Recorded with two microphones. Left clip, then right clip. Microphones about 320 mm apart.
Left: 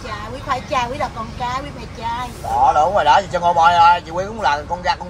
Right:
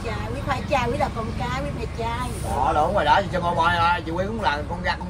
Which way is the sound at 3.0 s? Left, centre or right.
Left.